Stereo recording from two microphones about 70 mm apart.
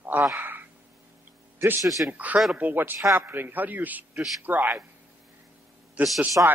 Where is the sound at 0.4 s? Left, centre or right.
Right.